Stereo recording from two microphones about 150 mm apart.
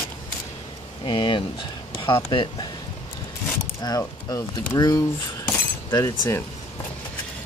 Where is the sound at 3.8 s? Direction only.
25° left (ahead or behind).